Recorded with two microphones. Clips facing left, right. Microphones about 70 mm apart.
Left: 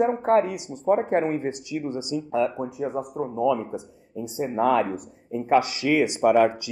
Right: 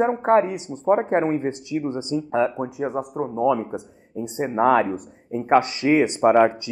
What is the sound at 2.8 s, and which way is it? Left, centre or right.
Speech, right.